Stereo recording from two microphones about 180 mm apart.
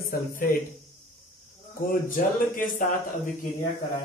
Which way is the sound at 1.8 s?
50° left (ahead or behind).